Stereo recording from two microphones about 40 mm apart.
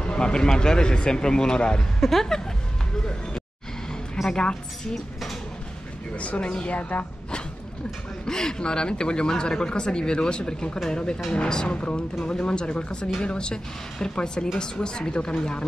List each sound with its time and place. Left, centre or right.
0.0 s speech: left
1.8 s speech: centre
4.3 s speech: left
4.9 s speech: centre
6.1 s a woman's voice: left
8.3 s speech: centre
11.7 s speech: left